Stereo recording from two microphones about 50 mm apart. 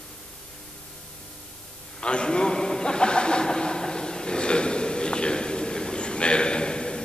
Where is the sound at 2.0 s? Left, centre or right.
Centre.